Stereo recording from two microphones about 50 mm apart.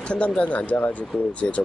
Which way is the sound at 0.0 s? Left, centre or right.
Centre.